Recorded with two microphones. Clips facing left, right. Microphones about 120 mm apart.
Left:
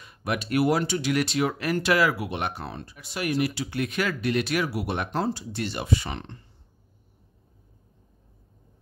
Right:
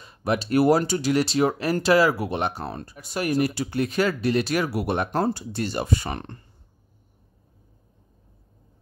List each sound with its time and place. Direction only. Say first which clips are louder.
0.0 s speech: right 4 dB; 30° right (ahead or behind); by 6.4 s 50° right (ahead or behind)